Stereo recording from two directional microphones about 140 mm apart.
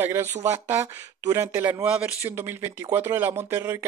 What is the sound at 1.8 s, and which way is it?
Speech, 10° right (ahead or behind).